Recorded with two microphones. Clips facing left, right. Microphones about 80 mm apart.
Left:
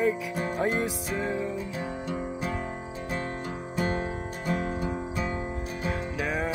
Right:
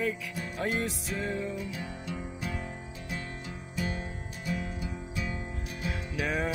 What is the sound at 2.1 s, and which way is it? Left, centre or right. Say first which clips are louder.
Music: left 5 dB; left.